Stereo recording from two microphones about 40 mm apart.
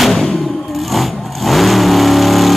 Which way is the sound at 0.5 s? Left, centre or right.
Centre.